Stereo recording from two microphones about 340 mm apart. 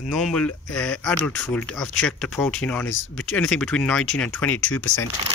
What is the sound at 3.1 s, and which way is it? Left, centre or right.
Speech, centre.